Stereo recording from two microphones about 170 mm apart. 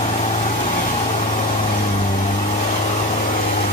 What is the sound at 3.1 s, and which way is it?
Vehicle, 50° left (ahead or behind).